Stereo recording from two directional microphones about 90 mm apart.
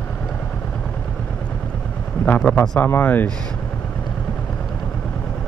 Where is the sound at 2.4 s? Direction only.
15° left (ahead or behind).